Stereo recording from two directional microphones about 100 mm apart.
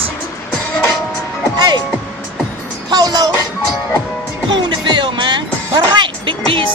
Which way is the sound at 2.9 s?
40° right (ahead or behind).